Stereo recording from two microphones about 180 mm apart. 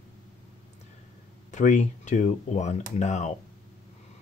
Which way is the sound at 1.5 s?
40° left (ahead or behind).